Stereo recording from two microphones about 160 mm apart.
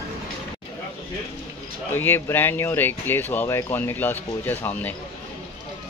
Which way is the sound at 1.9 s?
15° left (ahead or behind).